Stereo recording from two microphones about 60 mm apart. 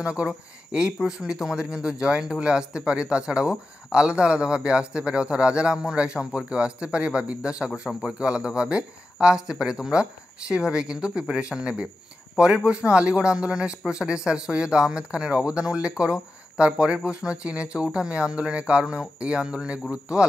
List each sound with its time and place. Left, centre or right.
0.0 s speech: centre